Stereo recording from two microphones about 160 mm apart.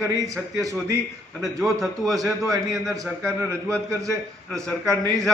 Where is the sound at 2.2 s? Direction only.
20° right (ahead or behind).